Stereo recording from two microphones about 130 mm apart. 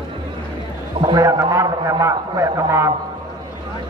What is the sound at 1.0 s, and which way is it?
A man's voice, 30° right (ahead or behind).